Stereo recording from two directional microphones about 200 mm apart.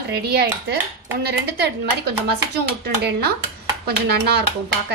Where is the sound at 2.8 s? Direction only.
55° right (ahead or behind).